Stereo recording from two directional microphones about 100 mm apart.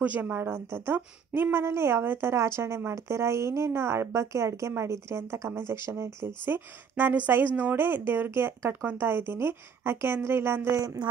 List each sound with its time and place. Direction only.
0.0 s a woman's voice: 15° right (ahead or behind)